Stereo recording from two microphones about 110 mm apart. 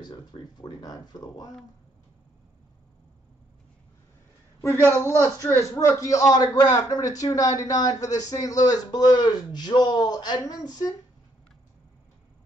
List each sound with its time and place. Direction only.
0.0 s a man's voice: 40° left (ahead or behind)
4.6 s a man's voice: 25° left (ahead or behind); by 11.0 s 40° left (ahead or behind)